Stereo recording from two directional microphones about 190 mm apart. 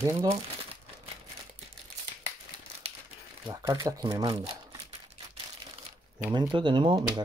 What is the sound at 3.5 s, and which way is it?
Speech, 20° right (ahead or behind).